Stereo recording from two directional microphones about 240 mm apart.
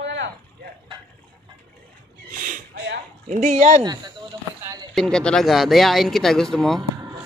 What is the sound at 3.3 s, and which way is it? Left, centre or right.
Speech, right.